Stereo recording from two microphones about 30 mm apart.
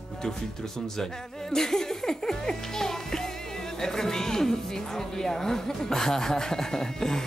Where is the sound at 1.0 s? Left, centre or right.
Centre.